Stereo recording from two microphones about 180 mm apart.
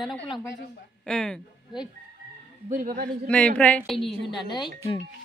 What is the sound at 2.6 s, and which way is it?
Speech, 45° right (ahead or behind).